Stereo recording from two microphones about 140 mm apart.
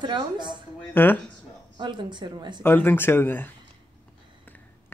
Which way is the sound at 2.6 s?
15° left (ahead or behind).